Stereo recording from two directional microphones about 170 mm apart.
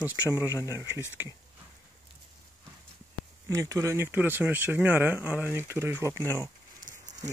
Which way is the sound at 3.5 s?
20° right (ahead or behind).